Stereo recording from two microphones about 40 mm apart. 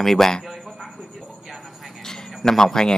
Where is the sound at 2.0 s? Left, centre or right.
Centre.